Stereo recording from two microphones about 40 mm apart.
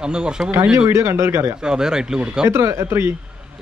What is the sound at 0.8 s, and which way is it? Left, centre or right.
Speech, right.